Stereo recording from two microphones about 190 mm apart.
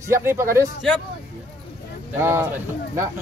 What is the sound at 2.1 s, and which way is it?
Speech, 15° right (ahead or behind).